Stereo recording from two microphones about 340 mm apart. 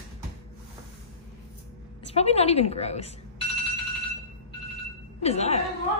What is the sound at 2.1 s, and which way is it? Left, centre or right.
Speech, centre.